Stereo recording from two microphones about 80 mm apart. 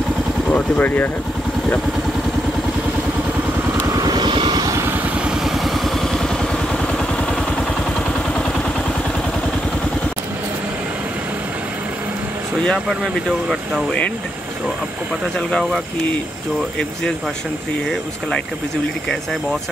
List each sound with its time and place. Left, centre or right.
0.5 s speech: centre
3.9 s vehicle: right
4.6 s vehicle: right
5.2 s vehicle: centre
12.7 s speech: centre